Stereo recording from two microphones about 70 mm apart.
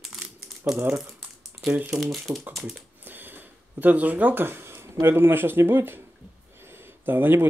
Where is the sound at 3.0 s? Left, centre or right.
Right.